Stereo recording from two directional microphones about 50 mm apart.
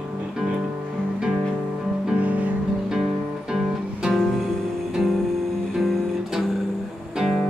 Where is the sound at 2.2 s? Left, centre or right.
Right.